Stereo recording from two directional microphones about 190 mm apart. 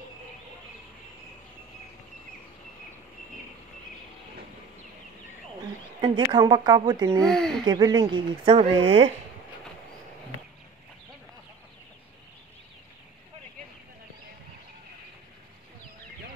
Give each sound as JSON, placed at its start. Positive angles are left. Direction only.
{"t": 5.9, "sound": "a woman's voice", "side_deg": -25}
{"t": 7.2, "sound": "speech", "side_deg": 0}
{"t": 7.6, "sound": "a woman's voice", "side_deg": -20}